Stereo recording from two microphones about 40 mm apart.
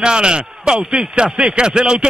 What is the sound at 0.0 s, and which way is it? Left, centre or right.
Speech, right.